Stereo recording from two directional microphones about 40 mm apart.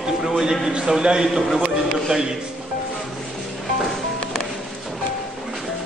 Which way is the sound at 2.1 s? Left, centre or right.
Centre.